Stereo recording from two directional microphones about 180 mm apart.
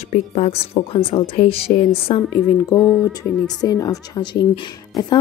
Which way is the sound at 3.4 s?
20° left (ahead or behind).